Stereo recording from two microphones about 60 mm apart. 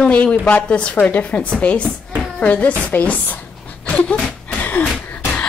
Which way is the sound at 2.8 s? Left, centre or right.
Left.